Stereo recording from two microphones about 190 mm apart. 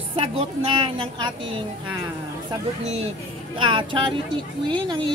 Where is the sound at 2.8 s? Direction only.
35° right (ahead or behind).